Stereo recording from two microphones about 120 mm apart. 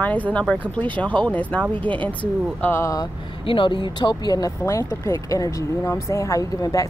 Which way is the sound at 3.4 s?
45° left (ahead or behind).